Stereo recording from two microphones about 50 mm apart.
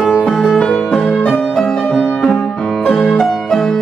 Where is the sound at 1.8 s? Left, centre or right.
Left.